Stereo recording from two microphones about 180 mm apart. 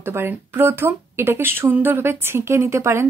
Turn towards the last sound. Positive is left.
turn(degrees=-15)  # may be behind; listen again after turning